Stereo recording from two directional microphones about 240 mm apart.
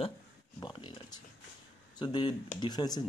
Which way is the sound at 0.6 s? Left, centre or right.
Centre.